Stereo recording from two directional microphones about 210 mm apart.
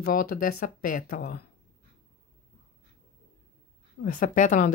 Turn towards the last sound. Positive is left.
turn(degrees=35)  # may be behind; listen again after turning